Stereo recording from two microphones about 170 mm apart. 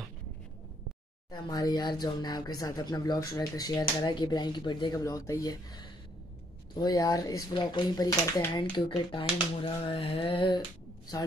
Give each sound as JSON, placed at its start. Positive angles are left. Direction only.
{"t": 1.3, "sound": "speech", "side_deg": 20}